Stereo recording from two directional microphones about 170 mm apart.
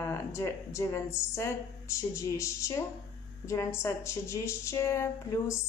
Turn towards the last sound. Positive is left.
turn(degrees=15)  # may be behind; listen again after turning